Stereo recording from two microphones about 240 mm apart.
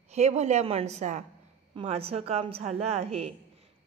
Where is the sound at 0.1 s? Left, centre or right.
Right.